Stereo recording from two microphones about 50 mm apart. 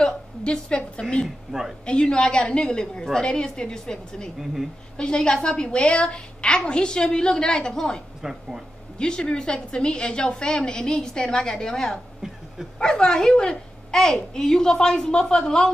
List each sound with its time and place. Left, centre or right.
0.4 s a woman's voice: left
1.2 s speech: centre
1.9 s a woman's voice: centre
8.2 s speech: centre
8.9 s a woman's voice: centre